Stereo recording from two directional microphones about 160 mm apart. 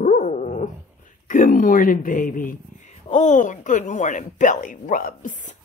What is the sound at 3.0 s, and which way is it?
A woman's voice, 50° left (ahead or behind).